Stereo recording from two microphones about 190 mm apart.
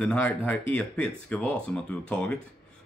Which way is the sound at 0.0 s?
10° left (ahead or behind).